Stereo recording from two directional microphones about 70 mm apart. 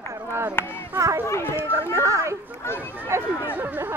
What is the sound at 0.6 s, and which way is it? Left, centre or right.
Speech, left.